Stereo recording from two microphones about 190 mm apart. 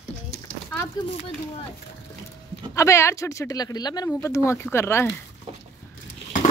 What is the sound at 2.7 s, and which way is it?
Speech, 15° left (ahead or behind).